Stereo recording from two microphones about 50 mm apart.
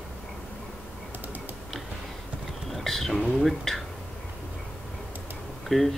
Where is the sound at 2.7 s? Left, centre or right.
Centre.